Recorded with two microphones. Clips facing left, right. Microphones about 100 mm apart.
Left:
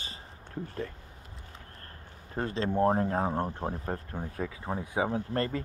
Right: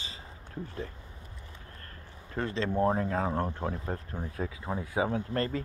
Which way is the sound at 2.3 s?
35° left (ahead or behind).